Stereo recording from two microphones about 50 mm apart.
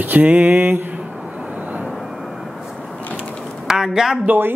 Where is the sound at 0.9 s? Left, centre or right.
Right.